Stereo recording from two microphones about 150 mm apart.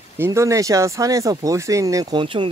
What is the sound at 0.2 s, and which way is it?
Speech, 20° right (ahead or behind).